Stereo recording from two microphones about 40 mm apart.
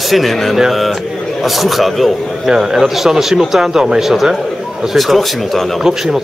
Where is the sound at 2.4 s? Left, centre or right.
Centre.